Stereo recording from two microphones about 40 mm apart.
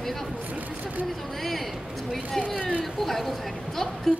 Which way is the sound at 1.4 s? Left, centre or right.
Centre.